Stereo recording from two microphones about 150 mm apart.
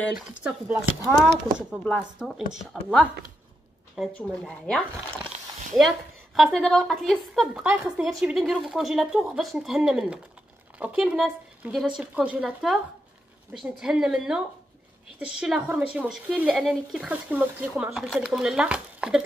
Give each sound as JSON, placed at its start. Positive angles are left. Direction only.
{"t": 0.3, "sound": "speech", "side_deg": -10}
{"t": 4.1, "sound": "speech", "side_deg": 10}
{"t": 7.6, "sound": "speech", "side_deg": -15}
{"t": 8.2, "sound": "speech", "side_deg": -5}